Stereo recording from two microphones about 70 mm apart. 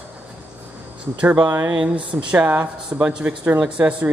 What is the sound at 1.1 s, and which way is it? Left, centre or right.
Speech, centre.